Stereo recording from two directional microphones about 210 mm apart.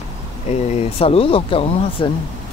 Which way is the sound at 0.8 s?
30° left (ahead or behind).